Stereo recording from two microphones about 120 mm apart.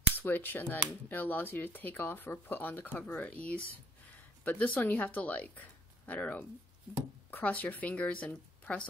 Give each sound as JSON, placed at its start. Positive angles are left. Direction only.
{"t": 0.2, "sound": "speech", "side_deg": 15}